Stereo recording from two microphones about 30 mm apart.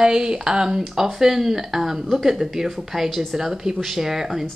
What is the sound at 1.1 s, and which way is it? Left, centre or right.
Speech, centre.